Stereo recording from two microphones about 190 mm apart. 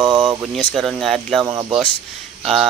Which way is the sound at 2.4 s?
Centre (ahead or behind).